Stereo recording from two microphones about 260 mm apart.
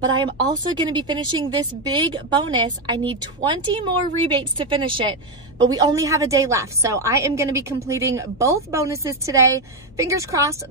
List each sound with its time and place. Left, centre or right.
0.8 s a woman's voice: centre